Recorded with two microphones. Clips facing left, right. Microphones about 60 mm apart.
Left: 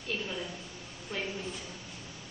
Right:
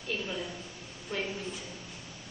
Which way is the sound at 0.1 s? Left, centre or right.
Centre.